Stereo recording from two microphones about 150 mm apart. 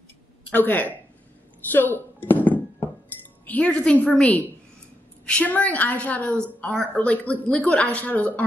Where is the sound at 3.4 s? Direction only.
10° left (ahead or behind).